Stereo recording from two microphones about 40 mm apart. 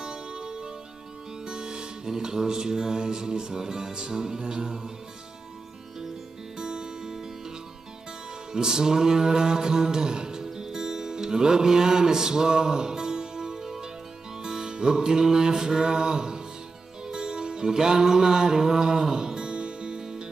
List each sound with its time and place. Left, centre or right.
0.0 s music: centre
6.6 s music: right
8.5 s music: centre